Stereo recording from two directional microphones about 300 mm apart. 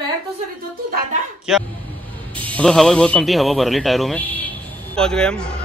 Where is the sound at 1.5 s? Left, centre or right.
Centre.